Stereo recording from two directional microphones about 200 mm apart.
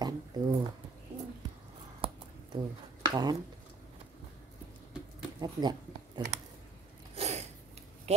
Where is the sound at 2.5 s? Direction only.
20° right (ahead or behind).